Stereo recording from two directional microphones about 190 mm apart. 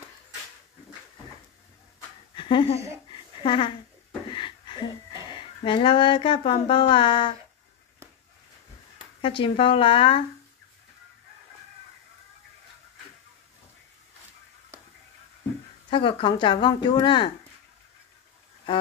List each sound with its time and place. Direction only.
2.3 s speech: 25° left (ahead or behind)
3.1 s a sound: 25° left (ahead or behind)
5.3 s speech: 25° left (ahead or behind)
9.2 s speech: 25° left (ahead or behind)
15.9 s speech: 25° left (ahead or behind)